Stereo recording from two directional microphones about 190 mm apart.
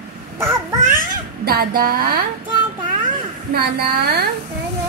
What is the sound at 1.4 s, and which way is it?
Speech, 55° right (ahead or behind).